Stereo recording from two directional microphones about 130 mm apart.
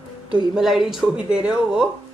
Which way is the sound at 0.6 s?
5° right (ahead or behind).